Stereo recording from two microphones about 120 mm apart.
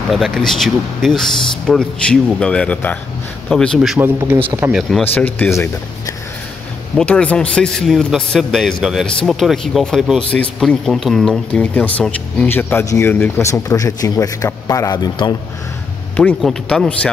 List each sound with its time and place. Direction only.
0.1 s a man's voice: centre (ahead or behind)
4.5 s speech: 15° right (ahead or behind)
4.7 s a man's voice: centre (ahead or behind)
5.0 s speech: 15° left (ahead or behind)
7.0 s a man's voice: 10° left (ahead or behind); by 15.3 s 35° left (ahead or behind)
16.2 s speech: 10° left (ahead or behind)